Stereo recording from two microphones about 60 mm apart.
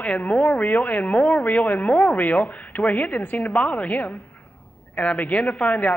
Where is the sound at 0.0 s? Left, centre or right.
Left.